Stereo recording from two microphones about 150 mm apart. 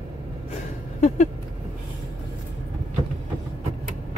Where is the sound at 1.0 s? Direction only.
55° left (ahead or behind).